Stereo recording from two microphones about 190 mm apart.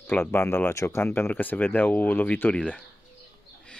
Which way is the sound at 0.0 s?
10° left (ahead or behind).